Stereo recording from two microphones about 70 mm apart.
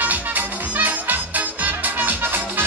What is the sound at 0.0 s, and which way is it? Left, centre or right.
Music, right.